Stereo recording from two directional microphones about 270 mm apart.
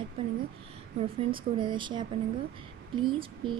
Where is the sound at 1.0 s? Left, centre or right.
Centre.